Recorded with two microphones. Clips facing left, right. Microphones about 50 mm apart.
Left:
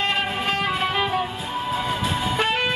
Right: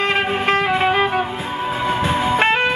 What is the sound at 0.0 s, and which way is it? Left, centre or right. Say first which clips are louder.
Music: right 5 dB; right.